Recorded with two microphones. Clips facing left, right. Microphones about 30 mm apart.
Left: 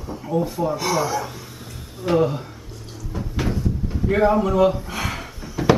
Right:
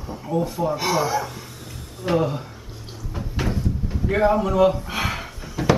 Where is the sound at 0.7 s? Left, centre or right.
Centre.